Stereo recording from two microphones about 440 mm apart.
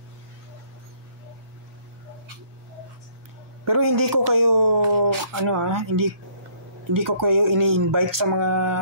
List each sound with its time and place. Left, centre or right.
3.7 s speech: right